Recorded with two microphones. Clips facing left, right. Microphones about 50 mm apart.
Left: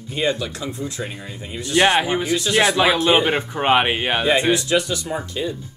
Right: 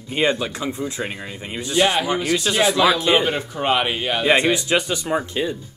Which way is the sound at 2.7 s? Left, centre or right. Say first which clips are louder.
Even; left.